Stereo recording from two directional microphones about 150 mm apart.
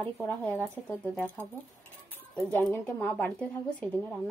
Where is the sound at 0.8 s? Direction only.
5° left (ahead or behind).